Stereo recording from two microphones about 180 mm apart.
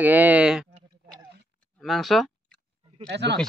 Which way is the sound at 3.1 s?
70° right (ahead or behind).